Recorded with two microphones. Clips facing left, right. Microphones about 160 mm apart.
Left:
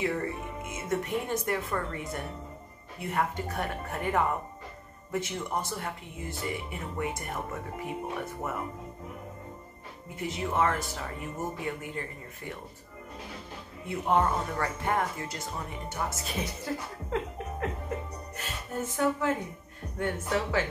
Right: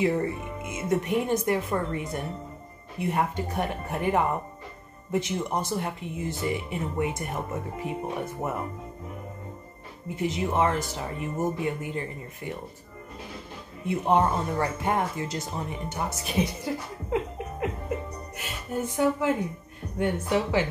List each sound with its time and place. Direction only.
0.0 s speech: 20° right (ahead or behind)
10.2 s speech: 20° right (ahead or behind)
13.8 s speech: 20° right (ahead or behind)